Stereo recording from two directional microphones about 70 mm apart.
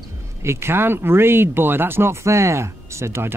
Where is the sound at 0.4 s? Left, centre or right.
Right.